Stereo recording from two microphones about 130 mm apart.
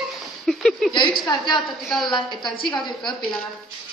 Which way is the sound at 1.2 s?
35° left (ahead or behind).